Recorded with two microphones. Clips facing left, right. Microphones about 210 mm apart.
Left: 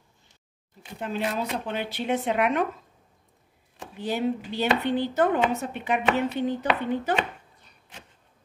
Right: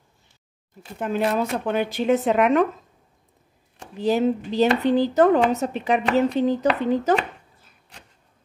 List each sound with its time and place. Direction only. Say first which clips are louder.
0.9 s speech: right 6 dB; 50° right (ahead or behind)
3.9 s speech: right 6 dB; 40° right (ahead or behind)